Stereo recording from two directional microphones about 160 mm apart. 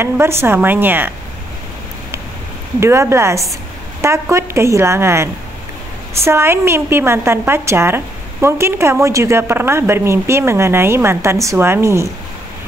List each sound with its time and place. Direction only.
0.0 s speech: 15° right (ahead or behind)
2.8 s speech: 15° right (ahead or behind)